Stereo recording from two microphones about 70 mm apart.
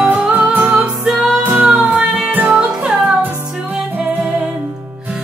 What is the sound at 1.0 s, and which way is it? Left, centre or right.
Music, centre.